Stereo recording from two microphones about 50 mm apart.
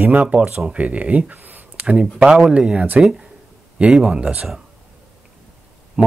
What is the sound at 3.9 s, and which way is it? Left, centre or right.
Speech, centre.